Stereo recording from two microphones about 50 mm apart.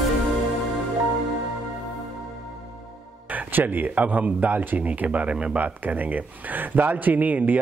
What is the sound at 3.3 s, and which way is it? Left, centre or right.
Speech, right.